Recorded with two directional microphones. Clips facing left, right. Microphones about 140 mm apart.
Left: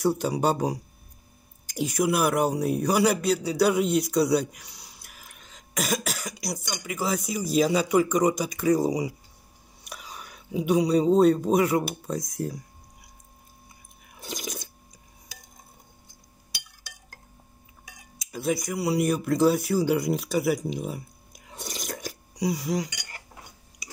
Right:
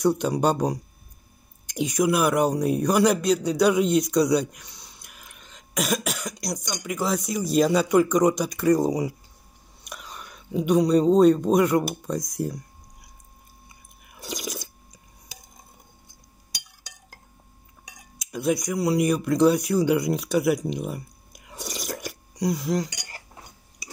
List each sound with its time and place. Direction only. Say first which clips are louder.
0.0 s a man's voice: right 2 dB; 5° left (ahead or behind)
14.2 s a sound: right 2 dB; centre (ahead or behind)
18.2 s speech: right 3 dB; centre (ahead or behind)
22.3 s speech: right 2 dB; 10° left (ahead or behind)
22.8 s cutlery: right 1 dB; 35° right (ahead or behind)